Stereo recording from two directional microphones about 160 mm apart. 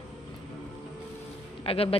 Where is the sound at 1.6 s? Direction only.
35° left (ahead or behind).